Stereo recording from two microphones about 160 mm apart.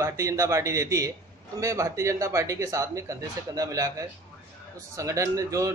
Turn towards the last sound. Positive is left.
turn(degrees=-20)  # may be behind; listen again after turning